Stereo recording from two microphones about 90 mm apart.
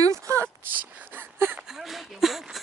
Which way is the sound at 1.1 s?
25° right (ahead or behind).